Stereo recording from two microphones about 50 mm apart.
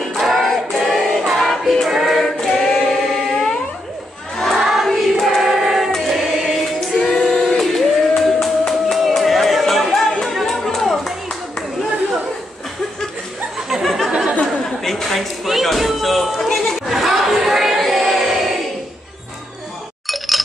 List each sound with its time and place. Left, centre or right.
0.2 s music: centre
1.9 s choir: centre
2.2 s choir: centre
7.1 s singing: centre
10.3 s music: centre
13.8 s a sound: centre
20.1 s chink: centre